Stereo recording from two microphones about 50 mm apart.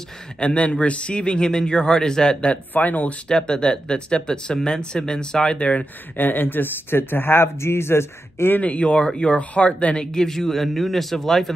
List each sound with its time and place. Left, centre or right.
0.4 s a man's voice: left
2.7 s speech: left
3.3 s speech: centre
6.1 s speech: left
8.5 s a man's voice: left
10.1 s a man's voice: centre